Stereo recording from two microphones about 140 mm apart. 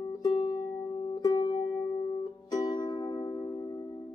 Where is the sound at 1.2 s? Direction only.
30° left (ahead or behind).